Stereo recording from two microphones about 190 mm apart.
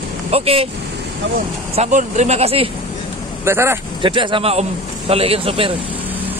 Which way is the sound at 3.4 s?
15° right (ahead or behind).